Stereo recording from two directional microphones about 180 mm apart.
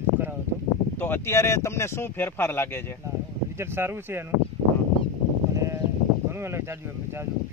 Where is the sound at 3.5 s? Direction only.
15° right (ahead or behind).